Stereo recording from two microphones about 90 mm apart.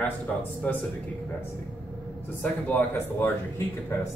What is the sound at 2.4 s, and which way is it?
Speech, 20° left (ahead or behind).